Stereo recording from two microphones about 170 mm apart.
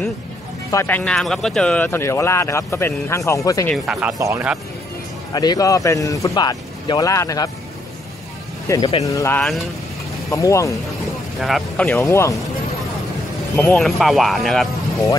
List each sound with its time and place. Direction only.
0.7 s speech: 15° left (ahead or behind)
3.6 s speech: centre (ahead or behind)
4.1 s speech: 15° right (ahead or behind)
5.3 s speech: 25° left (ahead or behind)
8.7 s speech: 15° left (ahead or behind)
11.3 s speech: centre (ahead or behind); by 12.4 s 15° left (ahead or behind)
13.6 s speech: 5° left (ahead or behind)